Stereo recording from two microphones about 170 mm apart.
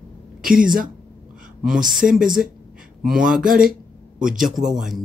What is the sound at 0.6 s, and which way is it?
Speech, 55° right (ahead or behind).